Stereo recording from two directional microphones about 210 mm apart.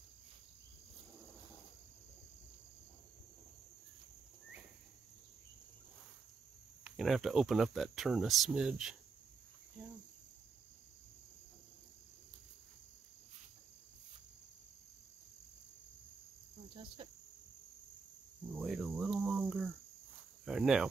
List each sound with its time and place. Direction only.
6.8 s speech: centre (ahead or behind)
16.7 s cricket: 25° right (ahead or behind)
18.5 s cricket: centre (ahead or behind)